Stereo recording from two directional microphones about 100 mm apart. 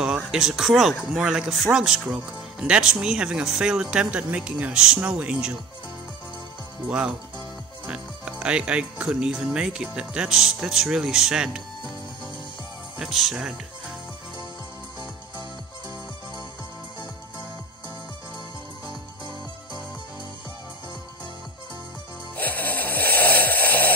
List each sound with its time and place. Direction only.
0.0 s speech: 5° right (ahead or behind)
6.9 s speech: 10° right (ahead or behind)
13.0 s speech: centre (ahead or behind)
18.9 s music: 50° left (ahead or behind)
22.3 s music: 15° left (ahead or behind)